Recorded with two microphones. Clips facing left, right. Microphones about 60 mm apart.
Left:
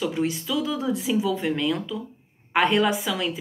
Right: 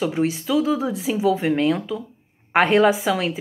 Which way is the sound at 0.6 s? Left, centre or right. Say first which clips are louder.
Right 5 dB; right.